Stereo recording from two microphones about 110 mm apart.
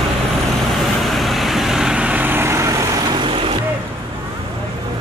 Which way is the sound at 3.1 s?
55° right (ahead or behind).